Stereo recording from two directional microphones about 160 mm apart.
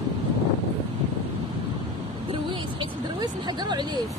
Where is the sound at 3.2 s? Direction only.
25° right (ahead or behind).